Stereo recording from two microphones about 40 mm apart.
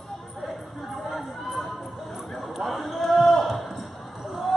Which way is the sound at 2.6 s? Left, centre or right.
Centre.